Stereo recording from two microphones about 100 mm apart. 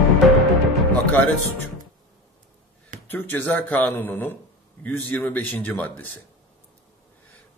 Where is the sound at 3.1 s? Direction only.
20° left (ahead or behind).